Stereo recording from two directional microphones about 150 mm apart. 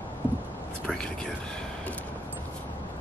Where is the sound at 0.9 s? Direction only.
5° left (ahead or behind).